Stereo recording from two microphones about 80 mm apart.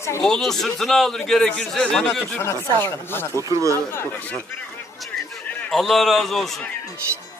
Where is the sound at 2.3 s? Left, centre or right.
Left.